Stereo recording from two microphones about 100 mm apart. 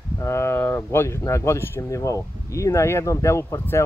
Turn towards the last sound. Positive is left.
turn(degrees=25)  # may be behind; listen again after turning